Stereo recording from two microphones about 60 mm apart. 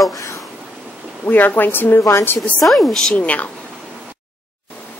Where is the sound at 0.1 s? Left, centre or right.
Left.